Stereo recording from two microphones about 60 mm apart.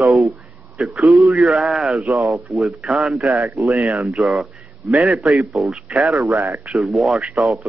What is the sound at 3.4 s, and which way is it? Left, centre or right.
Speech, right.